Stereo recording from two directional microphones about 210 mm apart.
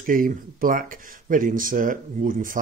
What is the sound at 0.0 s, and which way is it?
Speech, 40° right (ahead or behind).